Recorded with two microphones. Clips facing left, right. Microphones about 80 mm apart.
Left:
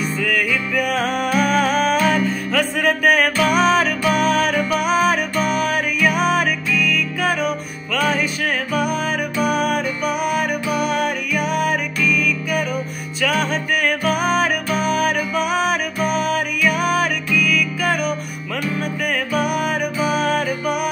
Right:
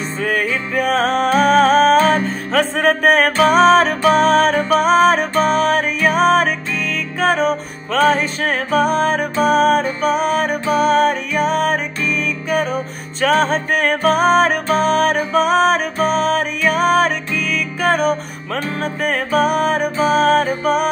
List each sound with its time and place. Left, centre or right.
0.2 s music: right